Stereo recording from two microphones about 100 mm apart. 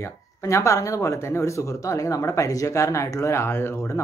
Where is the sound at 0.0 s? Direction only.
30° left (ahead or behind).